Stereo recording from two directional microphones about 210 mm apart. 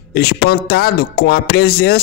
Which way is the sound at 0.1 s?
50° left (ahead or behind).